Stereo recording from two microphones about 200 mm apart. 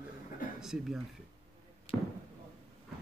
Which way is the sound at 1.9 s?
30° left (ahead or behind).